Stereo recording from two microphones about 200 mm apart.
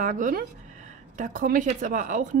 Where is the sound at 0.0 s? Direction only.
40° right (ahead or behind).